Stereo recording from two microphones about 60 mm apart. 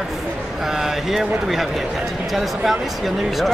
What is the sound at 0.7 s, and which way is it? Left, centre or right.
Speech, centre.